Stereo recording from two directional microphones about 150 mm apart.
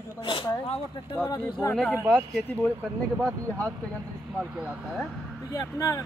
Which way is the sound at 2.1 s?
5° left (ahead or behind).